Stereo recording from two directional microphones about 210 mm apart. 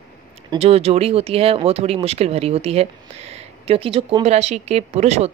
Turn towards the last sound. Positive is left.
turn(degrees=-30)  # may be behind; listen again after turning